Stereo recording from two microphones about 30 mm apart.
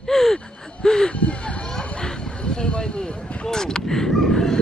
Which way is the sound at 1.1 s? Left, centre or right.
Left.